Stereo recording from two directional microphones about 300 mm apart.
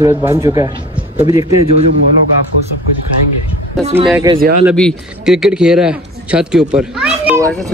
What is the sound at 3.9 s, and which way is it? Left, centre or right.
Speech, centre.